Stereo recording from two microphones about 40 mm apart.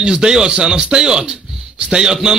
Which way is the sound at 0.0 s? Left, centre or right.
Centre.